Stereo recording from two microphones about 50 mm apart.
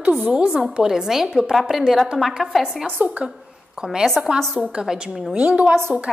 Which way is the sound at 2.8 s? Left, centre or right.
Right.